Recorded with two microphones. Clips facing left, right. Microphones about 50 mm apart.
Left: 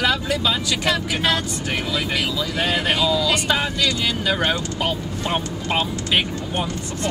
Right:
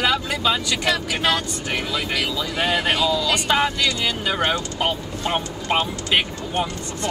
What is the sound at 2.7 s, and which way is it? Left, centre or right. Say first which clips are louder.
Speech: even; centre.